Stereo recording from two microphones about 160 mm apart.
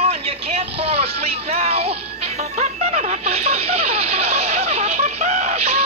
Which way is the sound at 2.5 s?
45° right (ahead or behind).